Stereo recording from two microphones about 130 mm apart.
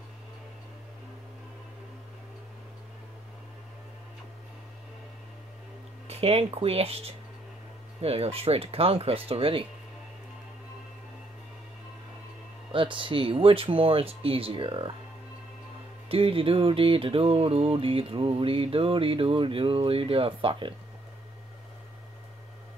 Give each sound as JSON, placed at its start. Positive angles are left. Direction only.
{"t": 6.0, "sound": "music", "side_deg": -50}
{"t": 12.7, "sound": "music", "side_deg": -40}
{"t": 16.1, "sound": "music", "side_deg": -45}